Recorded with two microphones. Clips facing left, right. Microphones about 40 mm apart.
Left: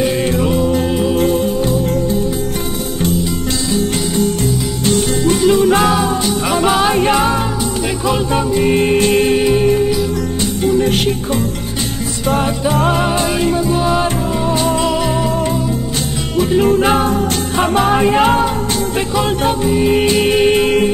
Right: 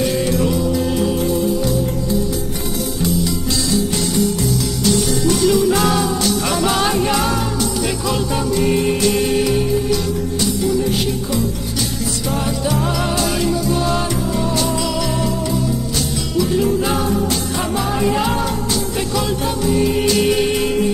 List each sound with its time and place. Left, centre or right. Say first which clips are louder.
0.2 s music: left 3 dB; left
4.8 s music: left 3 dB; left
6.2 s music: left 3 dB; left
6.9 s music: left 4 dB; left
8.7 s music: left 4 dB; left
10.6 s music: left 6 dB; left
12.7 s music: left 7 dB; left
16.3 s music: left 5 dB; left
19.9 s music: left 3 dB; left